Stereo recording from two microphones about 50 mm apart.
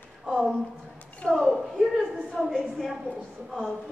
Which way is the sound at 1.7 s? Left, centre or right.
Centre.